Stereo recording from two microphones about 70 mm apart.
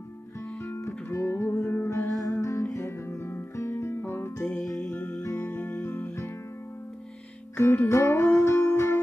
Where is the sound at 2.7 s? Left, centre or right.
Left.